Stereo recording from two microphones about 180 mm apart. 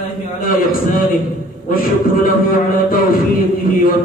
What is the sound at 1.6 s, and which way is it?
A man's voice, 50° left (ahead or behind).